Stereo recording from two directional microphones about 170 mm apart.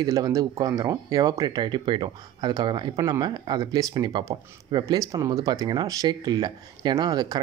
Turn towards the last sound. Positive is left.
turn(degrees=-25)  # may be behind; listen again after turning